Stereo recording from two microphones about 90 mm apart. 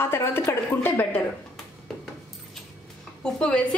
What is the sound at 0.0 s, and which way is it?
A woman's voice, 25° left (ahead or behind).